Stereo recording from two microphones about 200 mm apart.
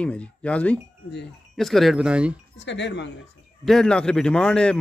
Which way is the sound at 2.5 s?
60° left (ahead or behind).